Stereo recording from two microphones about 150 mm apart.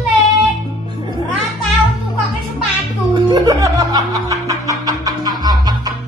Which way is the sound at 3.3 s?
25° right (ahead or behind).